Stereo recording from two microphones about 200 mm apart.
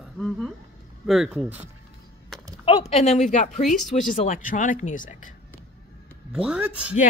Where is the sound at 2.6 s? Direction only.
30° left (ahead or behind).